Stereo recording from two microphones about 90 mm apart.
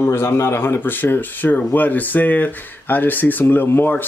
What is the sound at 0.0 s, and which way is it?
Speech, 30° left (ahead or behind).